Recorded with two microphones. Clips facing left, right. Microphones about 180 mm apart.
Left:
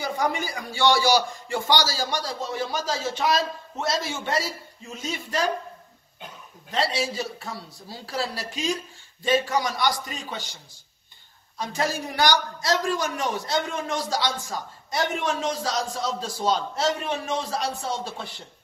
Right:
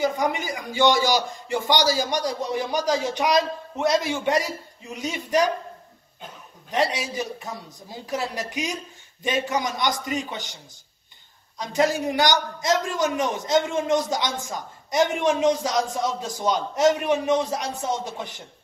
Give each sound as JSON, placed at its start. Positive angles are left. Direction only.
{"t": 0.0, "sound": "a man's voice", "side_deg": -20}
{"t": 6.7, "sound": "a man's voice", "side_deg": -20}